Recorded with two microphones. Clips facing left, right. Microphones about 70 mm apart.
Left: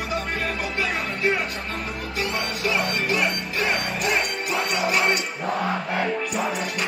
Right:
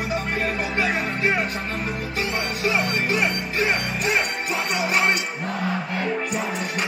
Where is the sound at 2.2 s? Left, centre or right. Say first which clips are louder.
Even; right.